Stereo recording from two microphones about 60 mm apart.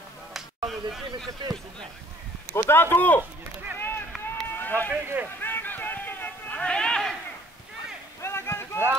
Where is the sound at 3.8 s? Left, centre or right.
Left.